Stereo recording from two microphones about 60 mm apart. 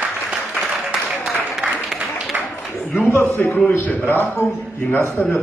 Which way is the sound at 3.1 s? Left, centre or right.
Left.